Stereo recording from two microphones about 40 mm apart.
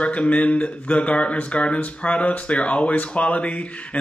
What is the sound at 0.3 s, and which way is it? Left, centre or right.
Speech, left.